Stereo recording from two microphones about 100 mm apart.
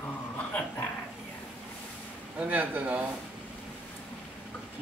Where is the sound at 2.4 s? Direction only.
15° right (ahead or behind).